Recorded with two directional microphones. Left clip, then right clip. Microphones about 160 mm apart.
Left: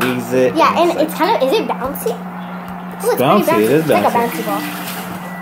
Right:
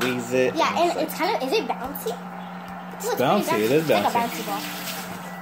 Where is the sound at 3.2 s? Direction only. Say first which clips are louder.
Left 7 dB; 20° right (ahead or behind).